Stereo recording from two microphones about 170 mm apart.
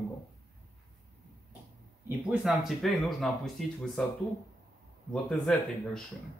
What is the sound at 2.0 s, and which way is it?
Speech, 10° right (ahead or behind).